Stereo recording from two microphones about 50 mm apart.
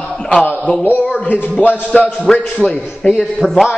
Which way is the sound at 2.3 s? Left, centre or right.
Centre.